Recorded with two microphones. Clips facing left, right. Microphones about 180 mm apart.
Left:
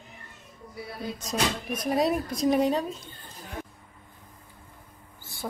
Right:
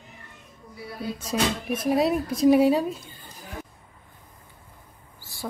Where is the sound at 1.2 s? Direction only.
10° right (ahead or behind).